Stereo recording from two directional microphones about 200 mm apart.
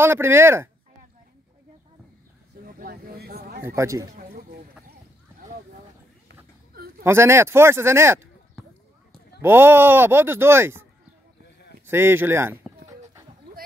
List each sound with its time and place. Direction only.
0.0 s speech: 10° right (ahead or behind)
2.6 s a sound: 45° right (ahead or behind)
3.6 s speech: 15° right (ahead or behind)
4.2 s a sound: 50° right (ahead or behind)
7.0 s speech: 15° right (ahead or behind)
9.4 s speech: 10° right (ahead or behind)